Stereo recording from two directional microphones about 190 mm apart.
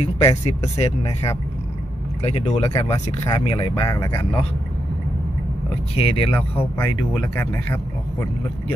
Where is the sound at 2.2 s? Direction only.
35° left (ahead or behind).